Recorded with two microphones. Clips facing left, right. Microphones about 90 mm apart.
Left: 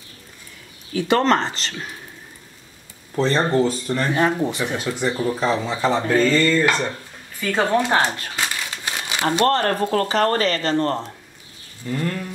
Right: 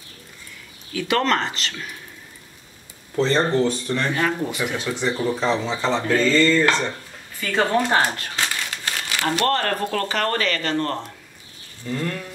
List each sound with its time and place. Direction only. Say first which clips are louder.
0.9 s speech: left 3 dB; 30° left (ahead or behind)
3.2 s speech: left 1 dB; 5° left (ahead or behind)
4.1 s speech: left 6 dB; 25° left (ahead or behind)
4.7 s speech: left 1 dB; 5° left (ahead or behind)
8.9 s speech: left 3 dB; 20° left (ahead or behind)